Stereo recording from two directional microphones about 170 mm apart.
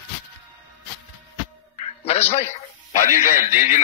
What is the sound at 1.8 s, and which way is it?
Music, 35° left (ahead or behind).